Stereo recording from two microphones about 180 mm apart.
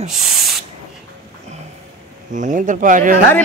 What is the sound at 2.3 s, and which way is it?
Speech, 45° right (ahead or behind).